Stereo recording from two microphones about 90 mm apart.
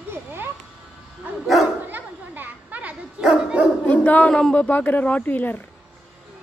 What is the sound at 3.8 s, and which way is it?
Speech, 20° left (ahead or behind).